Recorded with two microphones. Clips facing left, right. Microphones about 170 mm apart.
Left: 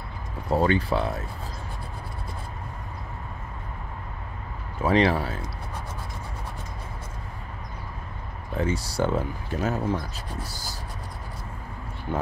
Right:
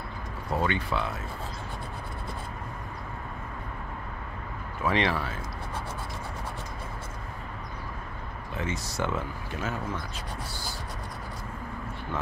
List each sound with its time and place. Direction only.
0.5 s speech: 35° left (ahead or behind)
4.8 s speech: 35° left (ahead or behind)
8.5 s speech: 35° left (ahead or behind)
10.5 s a sound: 40° left (ahead or behind)